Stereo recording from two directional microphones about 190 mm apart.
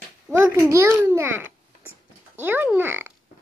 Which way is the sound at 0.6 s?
15° right (ahead or behind).